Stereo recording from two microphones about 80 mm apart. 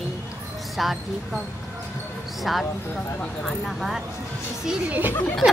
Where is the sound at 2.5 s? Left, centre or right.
Centre.